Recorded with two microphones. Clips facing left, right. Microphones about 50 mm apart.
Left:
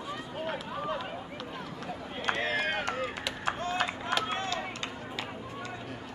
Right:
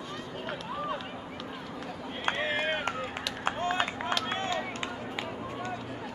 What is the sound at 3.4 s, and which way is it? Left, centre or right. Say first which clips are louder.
Run: right 2 dB; right.